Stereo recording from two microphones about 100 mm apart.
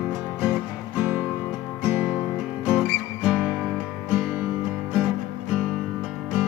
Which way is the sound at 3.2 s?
5° right (ahead or behind).